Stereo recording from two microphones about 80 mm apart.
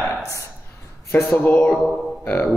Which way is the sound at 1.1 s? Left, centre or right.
Left.